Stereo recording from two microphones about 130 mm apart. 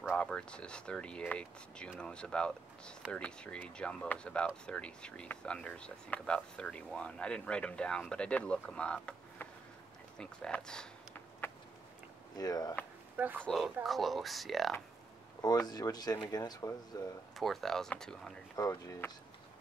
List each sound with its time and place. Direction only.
0.1 s speech: 10° left (ahead or behind)
12.4 s speech: 30° left (ahead or behind)
13.2 s speech: 15° right (ahead or behind)
13.8 s speech: centre (ahead or behind)
15.6 s speech: 30° left (ahead or behind)
17.4 s speech: centre (ahead or behind)
18.6 s speech: 25° left (ahead or behind)